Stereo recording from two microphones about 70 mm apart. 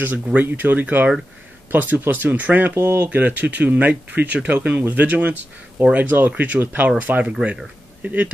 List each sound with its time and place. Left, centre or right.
0.0 s speech: right
2.7 s speech: right
3.1 s speech: right